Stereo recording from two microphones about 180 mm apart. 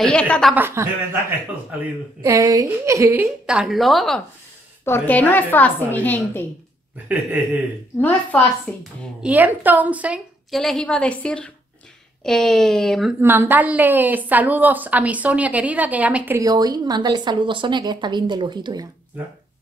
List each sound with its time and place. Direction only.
0.0 s a woman's voice: 5° left (ahead or behind)
0.6 s a woman's voice: 15° right (ahead or behind)
2.2 s a woman's voice: 20° right (ahead or behind); by 4.2 s centre (ahead or behind)
4.8 s a woman's voice: 10° left (ahead or behind)
7.1 s a woman's voice: 10° right (ahead or behind)
8.7 s a woman's voice: 5° left (ahead or behind)
9.2 s a woman's voice: 10° right (ahead or behind)
13.2 s a woman's voice: 10° right (ahead or behind)
16.3 s a woman's voice: 20° right (ahead or behind)